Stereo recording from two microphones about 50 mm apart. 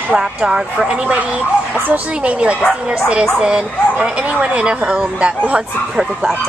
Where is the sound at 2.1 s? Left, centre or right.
Right.